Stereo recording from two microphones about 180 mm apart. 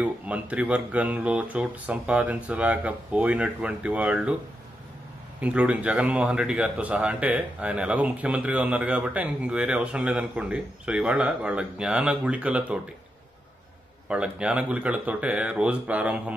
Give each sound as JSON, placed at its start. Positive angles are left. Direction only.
{"t": 0.0, "sound": "speech", "side_deg": -5}
{"t": 5.4, "sound": "speech", "side_deg": -5}
{"t": 14.0, "sound": "speech", "side_deg": -5}